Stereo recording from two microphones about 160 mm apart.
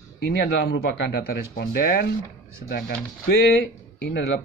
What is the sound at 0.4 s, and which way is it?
Speech, 90° left.